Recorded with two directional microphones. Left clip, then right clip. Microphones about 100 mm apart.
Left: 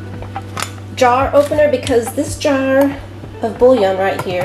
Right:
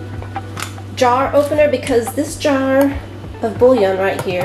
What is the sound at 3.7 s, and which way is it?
Speech, 20° right (ahead or behind).